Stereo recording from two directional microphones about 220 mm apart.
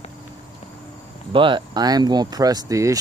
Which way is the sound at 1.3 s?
20° right (ahead or behind).